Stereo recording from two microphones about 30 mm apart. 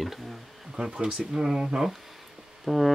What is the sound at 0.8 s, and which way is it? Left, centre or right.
Speech, right.